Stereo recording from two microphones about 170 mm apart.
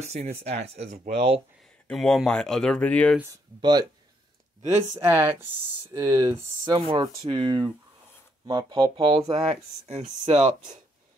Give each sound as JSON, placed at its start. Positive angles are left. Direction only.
{"t": 0.0, "sound": "speech", "side_deg": -40}
{"t": 1.9, "sound": "speech", "side_deg": 0}
{"t": 3.2, "sound": "speech", "side_deg": -20}
{"t": 5.0, "sound": "speech", "side_deg": -15}